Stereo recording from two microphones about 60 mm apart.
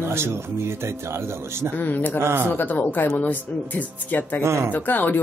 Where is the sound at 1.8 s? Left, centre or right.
Left.